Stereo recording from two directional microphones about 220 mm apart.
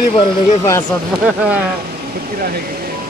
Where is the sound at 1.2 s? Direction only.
5° right (ahead or behind).